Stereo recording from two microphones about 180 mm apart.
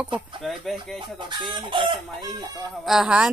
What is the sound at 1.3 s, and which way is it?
Chicken, 25° right (ahead or behind).